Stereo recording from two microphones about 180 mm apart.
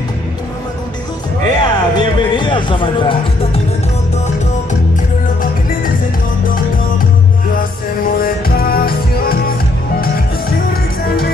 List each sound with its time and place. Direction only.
1.4 s music: 25° left (ahead or behind)
8.2 s music: 55° left (ahead or behind)
10.7 s music: 55° left (ahead or behind)